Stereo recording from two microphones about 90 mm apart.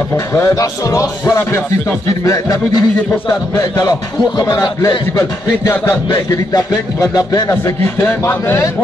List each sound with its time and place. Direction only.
0.1 s music: 25° left (ahead or behind)
2.2 s speech: 40° left (ahead or behind); by 8.6 s 25° left (ahead or behind)